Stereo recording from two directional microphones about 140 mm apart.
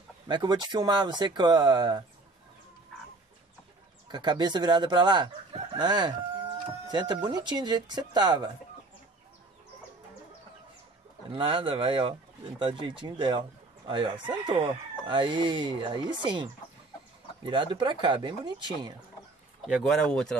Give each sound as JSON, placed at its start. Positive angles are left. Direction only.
{"t": 0.3, "sound": "speech", "side_deg": -30}
{"t": 4.1, "sound": "speech", "side_deg": -30}
{"t": 11.3, "sound": "speech", "side_deg": -40}
{"t": 17.5, "sound": "speech", "side_deg": -35}
{"t": 19.6, "sound": "speech", "side_deg": 0}